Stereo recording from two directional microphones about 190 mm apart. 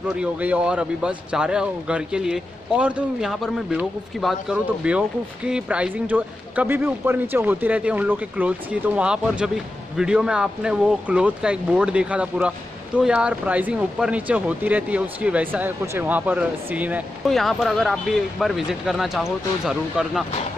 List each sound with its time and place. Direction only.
0.1 s speech: 5° right (ahead or behind)